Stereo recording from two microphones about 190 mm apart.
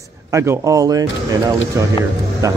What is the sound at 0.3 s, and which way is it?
Speech, 15° right (ahead or behind).